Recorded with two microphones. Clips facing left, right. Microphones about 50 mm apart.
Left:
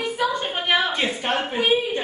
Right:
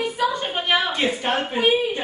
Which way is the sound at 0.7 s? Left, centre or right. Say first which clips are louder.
Right 1 dB; centre.